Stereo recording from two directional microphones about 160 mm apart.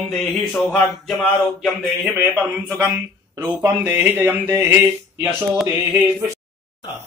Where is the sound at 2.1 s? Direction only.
10° right (ahead or behind).